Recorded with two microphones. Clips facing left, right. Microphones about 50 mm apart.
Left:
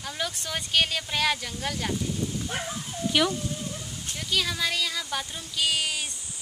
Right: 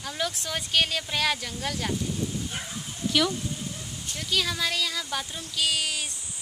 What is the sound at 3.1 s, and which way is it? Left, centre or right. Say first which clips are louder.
Speech: left 1 dB; centre.